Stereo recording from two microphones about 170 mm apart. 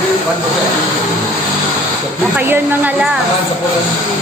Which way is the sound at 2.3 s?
10° right (ahead or behind).